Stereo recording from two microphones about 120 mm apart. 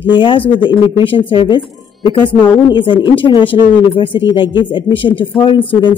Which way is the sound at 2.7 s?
40° left (ahead or behind).